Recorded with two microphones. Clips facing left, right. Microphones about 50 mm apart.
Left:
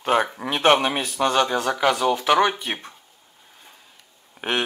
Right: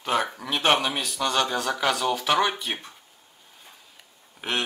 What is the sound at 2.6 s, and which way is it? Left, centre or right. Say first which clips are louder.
Speech: left 2 dB; left.